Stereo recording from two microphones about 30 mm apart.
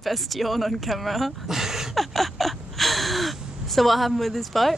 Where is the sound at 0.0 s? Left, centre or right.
Centre.